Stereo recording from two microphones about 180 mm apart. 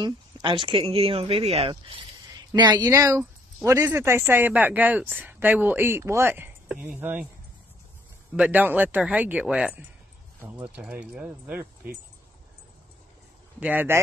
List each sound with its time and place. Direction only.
0.0 s speech: 25° right (ahead or behind)
2.8 s speech: 20° right (ahead or behind)
8.4 s speech: 10° right (ahead or behind)
13.6 s speech: 10° right (ahead or behind)